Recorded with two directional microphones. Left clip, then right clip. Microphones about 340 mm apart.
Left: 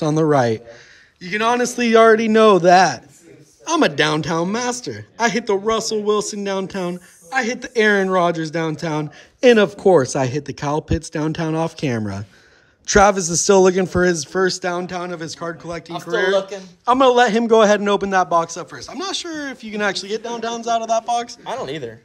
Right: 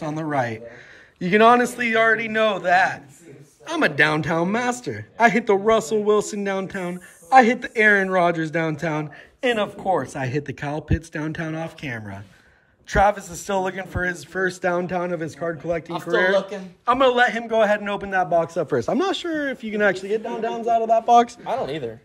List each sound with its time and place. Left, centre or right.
0.1 s a man's voice: centre
1.2 s a man's voice: centre
9.6 s speech: left
10.0 s a man's voice: centre
21.1 s speech: centre
21.5 s speech: left